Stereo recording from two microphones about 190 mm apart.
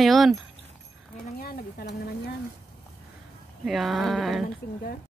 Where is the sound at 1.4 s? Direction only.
50° left (ahead or behind).